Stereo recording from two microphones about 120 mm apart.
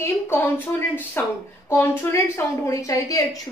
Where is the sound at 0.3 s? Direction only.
15° left (ahead or behind).